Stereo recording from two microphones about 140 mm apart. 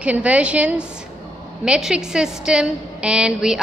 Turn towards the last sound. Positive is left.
turn(degrees=-5)  # may be behind; listen again after turning